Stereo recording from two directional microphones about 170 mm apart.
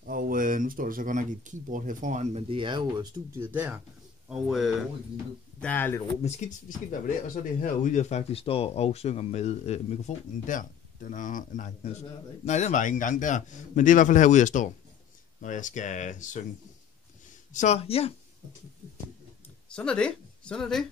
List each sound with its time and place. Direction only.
0.0 s speech: 55° right (ahead or behind); by 3.7 s 10° right (ahead or behind)
4.3 s speech: centre (ahead or behind)
6.2 s a man's voice: 45° left (ahead or behind)
17.5 s speech: 45° left (ahead or behind)
19.7 s speech: 5° left (ahead or behind)